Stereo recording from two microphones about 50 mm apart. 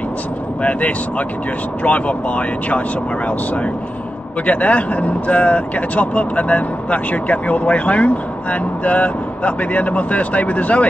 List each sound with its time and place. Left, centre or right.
0.6 s speech: left
4.5 s speech: left